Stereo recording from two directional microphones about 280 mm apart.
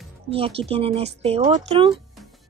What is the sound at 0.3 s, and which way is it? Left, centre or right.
A woman's voice, centre.